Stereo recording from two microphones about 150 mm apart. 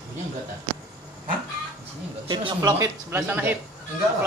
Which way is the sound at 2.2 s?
35° right (ahead or behind).